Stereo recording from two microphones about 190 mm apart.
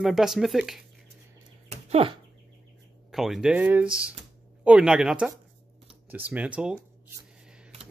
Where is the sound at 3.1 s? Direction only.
Centre (ahead or behind).